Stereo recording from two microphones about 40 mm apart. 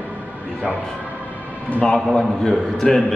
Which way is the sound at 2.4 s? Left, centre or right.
Centre.